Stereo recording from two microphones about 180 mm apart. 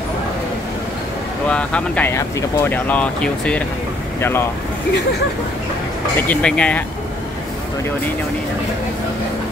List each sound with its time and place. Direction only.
1.5 s speech: 5° left (ahead or behind)
6.2 s speech: 5° left (ahead or behind)